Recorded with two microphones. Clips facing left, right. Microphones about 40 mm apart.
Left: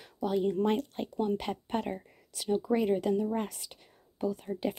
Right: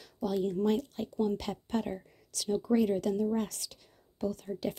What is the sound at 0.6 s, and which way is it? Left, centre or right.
Speech, left.